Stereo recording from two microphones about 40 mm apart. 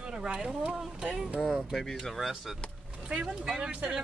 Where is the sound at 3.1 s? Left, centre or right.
Right.